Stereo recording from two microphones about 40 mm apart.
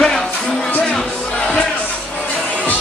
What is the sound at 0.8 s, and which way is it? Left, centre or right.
Music, left.